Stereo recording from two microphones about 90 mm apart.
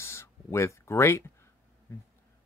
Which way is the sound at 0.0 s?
30° left (ahead or behind).